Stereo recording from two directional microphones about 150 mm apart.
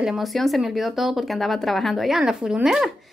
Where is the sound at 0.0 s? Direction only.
Centre (ahead or behind).